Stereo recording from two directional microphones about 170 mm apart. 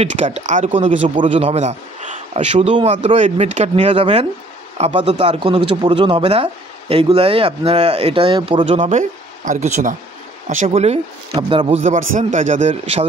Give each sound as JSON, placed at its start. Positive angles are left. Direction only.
{"t": 0.0, "sound": "a man's voice", "side_deg": -40}
{"t": 1.0, "sound": "a man's voice", "side_deg": -30}
{"t": 5.4, "sound": "a man's voice", "side_deg": -30}